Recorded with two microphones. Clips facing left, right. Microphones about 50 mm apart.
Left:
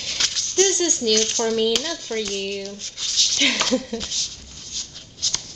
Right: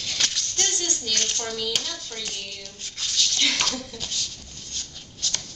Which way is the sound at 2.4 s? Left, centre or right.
Left.